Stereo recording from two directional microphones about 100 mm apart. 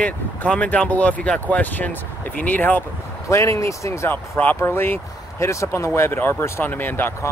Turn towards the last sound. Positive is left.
turn(degrees=20)  # may be behind; listen again after turning